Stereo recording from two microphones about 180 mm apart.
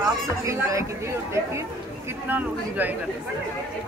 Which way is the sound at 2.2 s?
10° right (ahead or behind).